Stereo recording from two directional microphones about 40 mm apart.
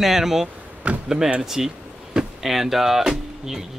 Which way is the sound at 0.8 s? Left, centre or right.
Right.